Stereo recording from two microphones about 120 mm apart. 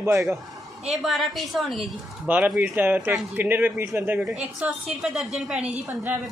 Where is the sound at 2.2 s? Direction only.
10° right (ahead or behind).